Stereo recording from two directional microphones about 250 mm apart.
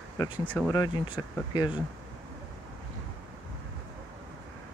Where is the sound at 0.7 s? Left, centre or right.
Centre.